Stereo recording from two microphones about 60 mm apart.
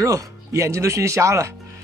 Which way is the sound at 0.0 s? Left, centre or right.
Right.